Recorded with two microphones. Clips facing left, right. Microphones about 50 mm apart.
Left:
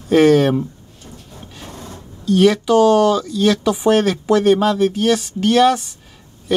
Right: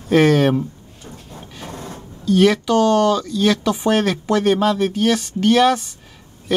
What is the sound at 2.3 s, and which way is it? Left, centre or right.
Speech, centre.